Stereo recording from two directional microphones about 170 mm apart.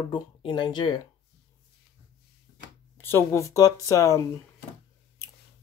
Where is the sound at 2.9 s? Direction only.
15° left (ahead or behind).